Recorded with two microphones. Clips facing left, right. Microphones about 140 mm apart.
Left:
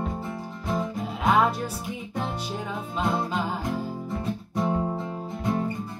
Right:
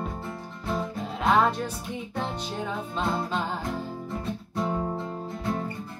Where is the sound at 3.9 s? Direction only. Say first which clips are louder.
Left 2 dB; 5° left (ahead or behind).